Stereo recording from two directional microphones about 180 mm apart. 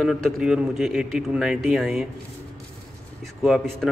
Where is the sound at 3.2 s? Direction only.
Centre (ahead or behind).